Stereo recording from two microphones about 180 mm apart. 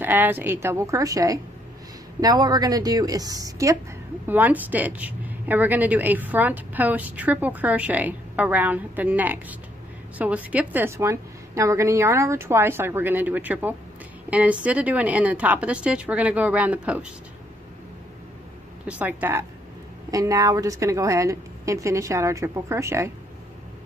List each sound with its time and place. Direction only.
0.0 s a woman's voice: 10° right (ahead or behind)
18.9 s a woman's voice: 10° right (ahead or behind)